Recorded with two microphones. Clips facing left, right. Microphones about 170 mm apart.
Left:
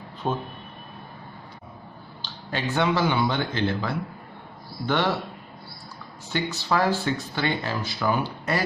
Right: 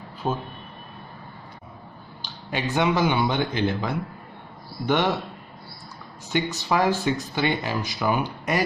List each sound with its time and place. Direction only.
0.2 s speech: 5° right (ahead or behind)
2.2 s speech: 15° right (ahead or behind)
6.3 s speech: 20° right (ahead or behind)